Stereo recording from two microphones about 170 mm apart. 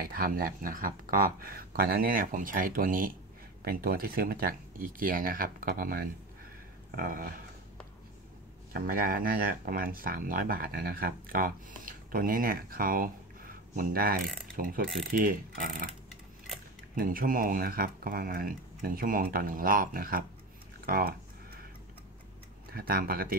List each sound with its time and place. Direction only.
0.0 s speech: 60° right (ahead or behind)
8.7 s speech: 60° right (ahead or behind)
16.9 s speech: 55° right (ahead or behind)
22.7 s speech: 60° right (ahead or behind)